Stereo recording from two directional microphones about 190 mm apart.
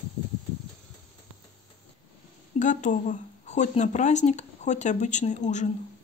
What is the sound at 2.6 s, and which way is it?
Speech, 40° left (ahead or behind).